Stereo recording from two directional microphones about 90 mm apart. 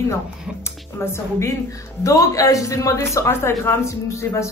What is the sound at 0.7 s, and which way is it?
A woman's voice, 30° left (ahead or behind).